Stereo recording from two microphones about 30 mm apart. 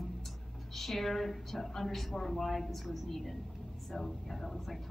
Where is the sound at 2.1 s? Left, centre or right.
Centre.